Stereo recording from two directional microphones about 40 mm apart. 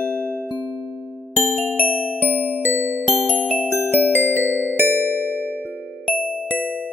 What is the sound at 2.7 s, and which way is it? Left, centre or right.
Music, right.